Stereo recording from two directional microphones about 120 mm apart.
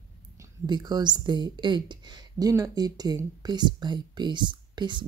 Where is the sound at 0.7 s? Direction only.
35° right (ahead or behind).